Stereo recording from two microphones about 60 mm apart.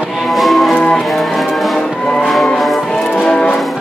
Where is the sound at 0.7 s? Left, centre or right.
Centre.